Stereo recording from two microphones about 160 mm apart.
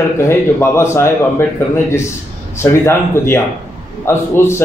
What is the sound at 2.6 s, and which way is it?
A man's voice, 15° left (ahead or behind).